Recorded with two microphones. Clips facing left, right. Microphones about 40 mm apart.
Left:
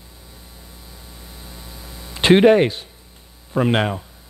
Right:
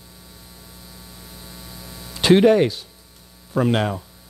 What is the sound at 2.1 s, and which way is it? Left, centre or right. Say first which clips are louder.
Hum: left 2 dB; left.